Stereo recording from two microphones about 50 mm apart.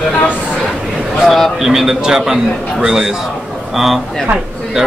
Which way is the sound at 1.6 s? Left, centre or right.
Centre.